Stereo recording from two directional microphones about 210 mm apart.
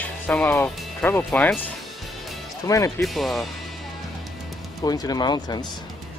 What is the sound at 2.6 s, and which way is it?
Speech, 15° left (ahead or behind).